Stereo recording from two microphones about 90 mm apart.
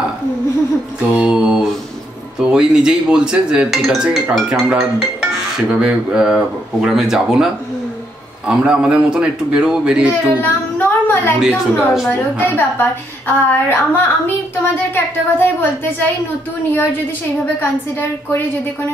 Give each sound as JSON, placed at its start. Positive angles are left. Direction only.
{"t": 1.1, "sound": "speech", "side_deg": -10}
{"t": 8.5, "sound": "speech", "side_deg": -10}
{"t": 10.4, "sound": "a sound", "side_deg": 20}
{"t": 11.3, "sound": "a woman's voice", "side_deg": -5}
{"t": 12.5, "sound": "a woman's voice", "side_deg": 25}